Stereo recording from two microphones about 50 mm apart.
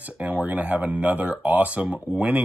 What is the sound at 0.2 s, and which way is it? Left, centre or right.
Speech, right.